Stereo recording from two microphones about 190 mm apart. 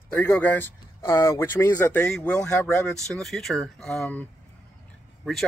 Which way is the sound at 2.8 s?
Centre (ahead or behind).